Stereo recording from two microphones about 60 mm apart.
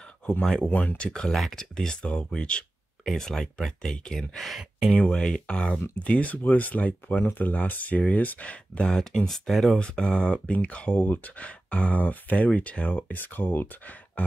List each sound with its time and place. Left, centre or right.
0.7 s speech: left
9.3 s speech: centre
9.8 s speech: centre; by 14.2 s left